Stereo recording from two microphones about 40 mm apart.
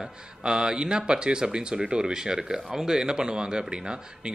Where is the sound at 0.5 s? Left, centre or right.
Right.